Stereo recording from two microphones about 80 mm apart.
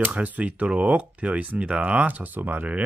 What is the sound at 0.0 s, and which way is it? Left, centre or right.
Speech, centre.